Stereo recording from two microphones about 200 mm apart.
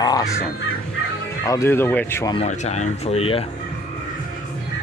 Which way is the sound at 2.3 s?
35° left (ahead or behind).